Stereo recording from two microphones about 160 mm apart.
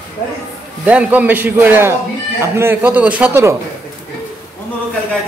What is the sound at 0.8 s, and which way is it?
A man's voice, 10° right (ahead or behind).